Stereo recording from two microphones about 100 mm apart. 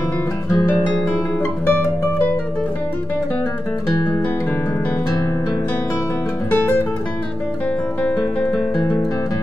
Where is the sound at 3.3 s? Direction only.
15° left (ahead or behind).